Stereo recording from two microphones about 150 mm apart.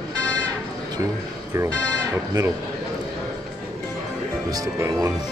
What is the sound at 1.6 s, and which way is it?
Speech, 20° right (ahead or behind).